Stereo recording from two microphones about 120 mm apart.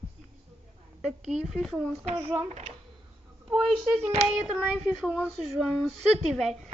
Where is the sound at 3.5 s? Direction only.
5° right (ahead or behind).